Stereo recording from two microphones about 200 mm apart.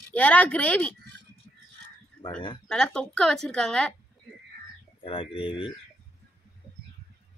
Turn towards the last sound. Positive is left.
turn(degrees=25)  # may be behind; listen again after turning